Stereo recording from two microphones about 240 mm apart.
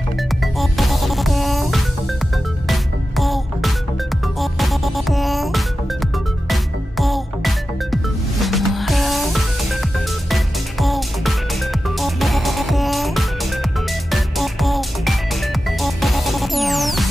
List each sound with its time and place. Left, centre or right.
0.4 s music: centre